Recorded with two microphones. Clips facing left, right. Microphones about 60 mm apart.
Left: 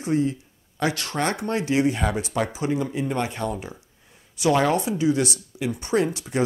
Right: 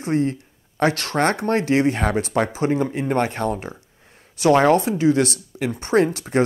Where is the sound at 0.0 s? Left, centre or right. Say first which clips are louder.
Right 2 dB; right.